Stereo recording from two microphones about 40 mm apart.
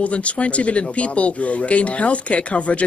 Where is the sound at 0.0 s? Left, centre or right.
Left.